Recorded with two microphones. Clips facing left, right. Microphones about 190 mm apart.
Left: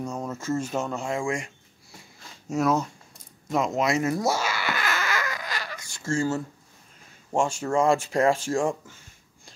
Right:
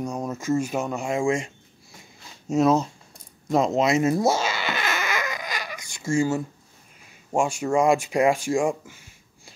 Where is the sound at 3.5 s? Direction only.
30° right (ahead or behind); by 6.4 s 15° right (ahead or behind).